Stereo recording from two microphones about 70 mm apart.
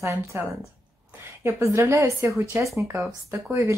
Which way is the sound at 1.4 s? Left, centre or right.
Right.